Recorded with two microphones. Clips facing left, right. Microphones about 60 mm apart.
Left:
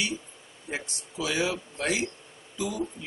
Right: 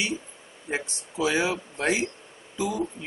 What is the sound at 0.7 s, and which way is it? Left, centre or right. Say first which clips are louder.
Speech: right 4 dB; right.